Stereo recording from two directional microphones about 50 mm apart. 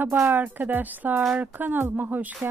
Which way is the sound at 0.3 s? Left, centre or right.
Right.